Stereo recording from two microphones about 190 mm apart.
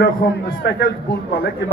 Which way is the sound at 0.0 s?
60° left (ahead or behind).